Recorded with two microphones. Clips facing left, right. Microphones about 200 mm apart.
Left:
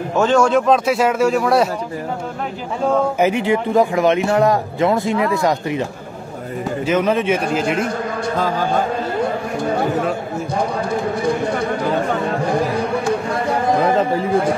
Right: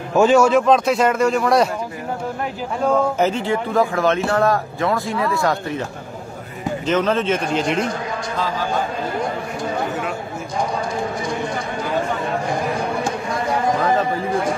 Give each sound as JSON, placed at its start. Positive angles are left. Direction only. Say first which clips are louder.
{"t": 0.1, "sound": "a man's voice", "louder": "right 1 dB", "side_deg": -10}
{"t": 2.9, "sound": "speech", "louder": "left 2 dB", "side_deg": 10}
{"t": 6.9, "sound": "speech", "louder": "left 2 dB", "side_deg": 10}
{"t": 8.4, "sound": "speech", "louder": "left 3 dB", "side_deg": 50}
{"t": 11.2, "sound": "chatter", "louder": "left 6 dB", "side_deg": 60}